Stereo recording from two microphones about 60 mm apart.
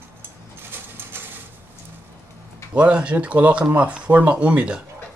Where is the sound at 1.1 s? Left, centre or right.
Right.